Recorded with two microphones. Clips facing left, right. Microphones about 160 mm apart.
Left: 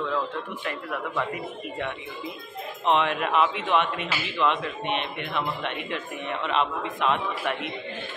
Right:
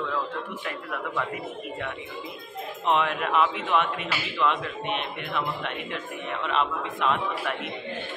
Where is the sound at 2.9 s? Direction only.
Centre (ahead or behind).